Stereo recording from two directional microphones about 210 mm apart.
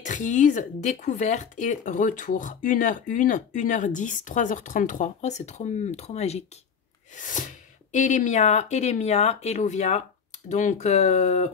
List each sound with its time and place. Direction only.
0.0 s speech: 35° left (ahead or behind)